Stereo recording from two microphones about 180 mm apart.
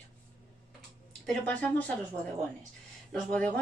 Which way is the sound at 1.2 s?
10° left (ahead or behind).